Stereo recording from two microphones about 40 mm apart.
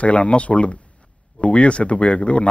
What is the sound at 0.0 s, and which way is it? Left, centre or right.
Speech, left.